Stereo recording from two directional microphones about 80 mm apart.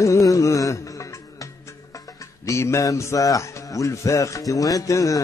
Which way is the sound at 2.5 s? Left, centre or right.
Left.